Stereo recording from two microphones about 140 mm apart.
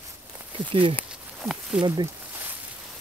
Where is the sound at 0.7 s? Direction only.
40° right (ahead or behind).